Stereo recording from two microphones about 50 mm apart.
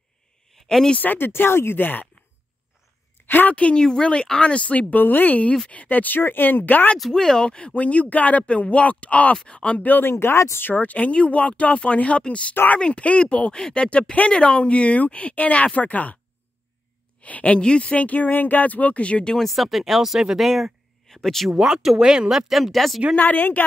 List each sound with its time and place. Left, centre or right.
0.6 s a sound: centre
0.9 s speech: left
3.3 s a woman's voice: left
3.5 s speech: left
7.0 s speech: centre
9.8 s speech: left
10.6 s speech: left
13.6 s speech: centre
13.8 s speech: left
17.2 s a woman's voice: left
19.3 s speech: centre
21.5 s speech: centre
23.1 s speech: left